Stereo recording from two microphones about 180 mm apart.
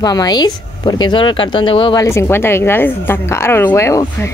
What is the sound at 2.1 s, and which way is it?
Speech, 15° left (ahead or behind).